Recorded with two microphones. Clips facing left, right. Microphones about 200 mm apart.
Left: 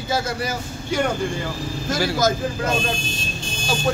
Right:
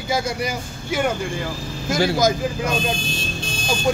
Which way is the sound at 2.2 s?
15° right (ahead or behind).